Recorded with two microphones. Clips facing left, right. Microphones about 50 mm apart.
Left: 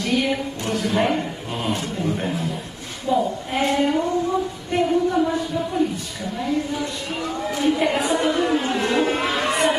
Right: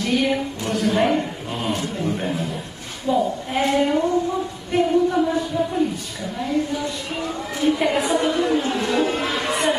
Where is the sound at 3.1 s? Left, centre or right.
Centre.